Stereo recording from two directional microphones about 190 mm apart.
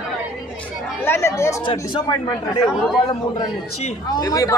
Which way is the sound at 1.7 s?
30° left (ahead or behind).